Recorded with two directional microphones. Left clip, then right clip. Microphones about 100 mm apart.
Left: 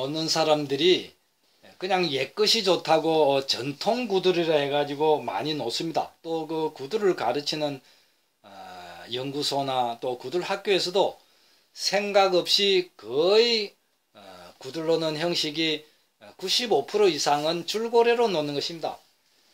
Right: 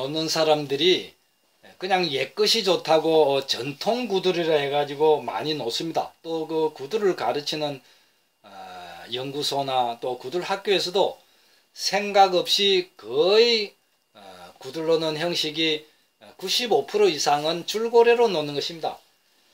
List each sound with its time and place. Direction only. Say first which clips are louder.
0.0 s speech: right 2 dB; 40° left (ahead or behind)